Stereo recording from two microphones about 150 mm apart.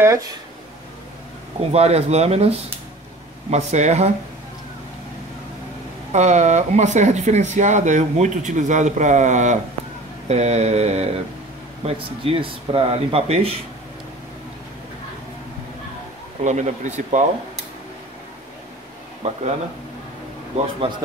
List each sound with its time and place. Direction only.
0.0 s speech: 20° right (ahead or behind)
1.6 s speech: 45° right (ahead or behind)
6.1 s speech: 50° right (ahead or behind)
16.4 s speech: 50° right (ahead or behind)
19.2 s speech: 50° right (ahead or behind)